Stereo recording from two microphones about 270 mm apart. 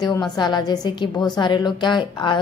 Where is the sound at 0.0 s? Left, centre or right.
Centre.